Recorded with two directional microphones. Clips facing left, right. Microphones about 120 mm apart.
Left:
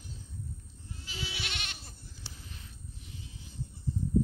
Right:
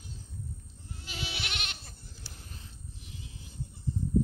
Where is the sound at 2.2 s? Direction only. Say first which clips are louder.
Even; 50° right (ahead or behind).